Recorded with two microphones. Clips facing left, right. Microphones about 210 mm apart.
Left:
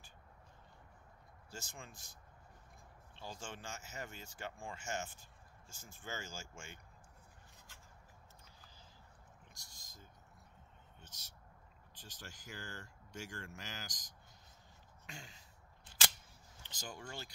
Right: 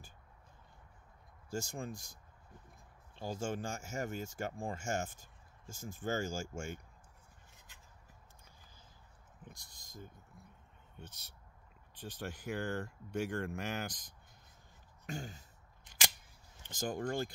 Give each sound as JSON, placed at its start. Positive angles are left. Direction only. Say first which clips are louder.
{"t": 1.7, "sound": "speech", "louder": "right 12 dB", "side_deg": -45}
{"t": 3.2, "sound": "speech", "louder": "right 10 dB", "side_deg": -45}
{"t": 9.5, "sound": "speech", "louder": "right 7 dB", "side_deg": -55}
{"t": 16.6, "sound": "speech", "louder": "right 12 dB", "side_deg": -50}